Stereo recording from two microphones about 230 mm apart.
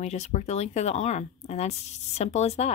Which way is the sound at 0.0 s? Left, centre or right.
Left.